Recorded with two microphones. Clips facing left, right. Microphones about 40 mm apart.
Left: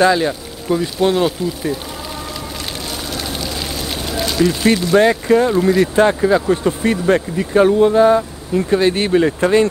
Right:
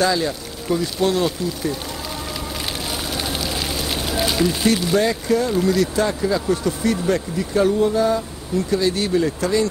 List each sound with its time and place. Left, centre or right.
0.0 s speech: left
0.7 s speech: centre
3.3 s a sound: centre
4.9 s speech: left
5.5 s speech: left